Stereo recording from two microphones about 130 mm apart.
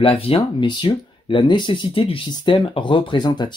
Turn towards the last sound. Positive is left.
turn(degrees=35)  # may be behind; listen again after turning